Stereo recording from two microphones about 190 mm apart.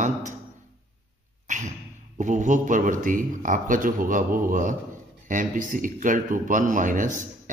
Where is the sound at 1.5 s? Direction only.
40° right (ahead or behind).